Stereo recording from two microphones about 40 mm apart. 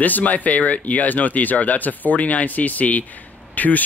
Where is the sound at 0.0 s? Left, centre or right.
Left.